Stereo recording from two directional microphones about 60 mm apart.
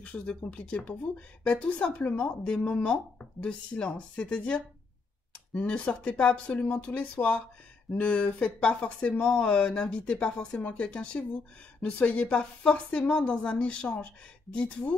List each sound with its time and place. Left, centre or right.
0.0 s a woman's voice: centre